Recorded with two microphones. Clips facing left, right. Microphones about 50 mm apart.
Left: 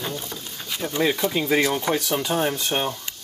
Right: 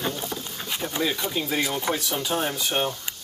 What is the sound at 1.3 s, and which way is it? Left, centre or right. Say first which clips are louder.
Speech: left 5 dB; left.